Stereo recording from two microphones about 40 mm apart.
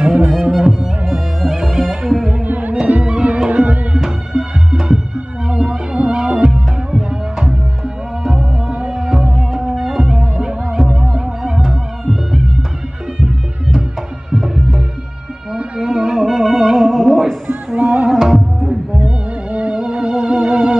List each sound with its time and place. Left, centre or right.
0.2 s music: right
0.5 s music: centre
1.0 s music: centre
2.4 s music: right
3.0 s music: right
4.0 s music: centre
10.3 s music: right
10.8 s music: centre
14.3 s music: centre
16.3 s music: centre
17.7 s music: right
18.1 s music: centre
19.0 s music: right